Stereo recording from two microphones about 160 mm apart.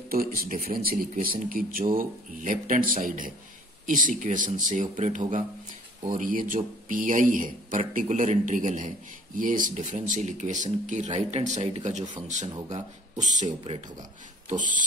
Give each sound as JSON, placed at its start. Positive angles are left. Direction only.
{"t": 0.1, "sound": "a man's voice", "side_deg": -65}